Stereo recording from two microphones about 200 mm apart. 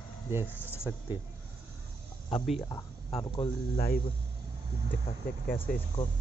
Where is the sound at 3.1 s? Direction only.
30° left (ahead or behind).